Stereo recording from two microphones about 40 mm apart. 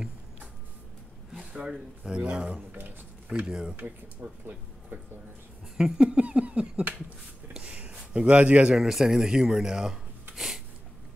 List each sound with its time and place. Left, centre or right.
1.5 s speech: right
3.3 s speech: right
3.7 s speech: right
5.9 s speech: right
7.5 s a sound: right
8.1 s speech: right
8.7 s speech: centre
10.3 s a sound: centre